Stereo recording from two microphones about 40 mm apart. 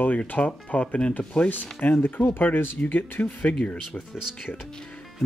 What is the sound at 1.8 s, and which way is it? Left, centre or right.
Speech, left.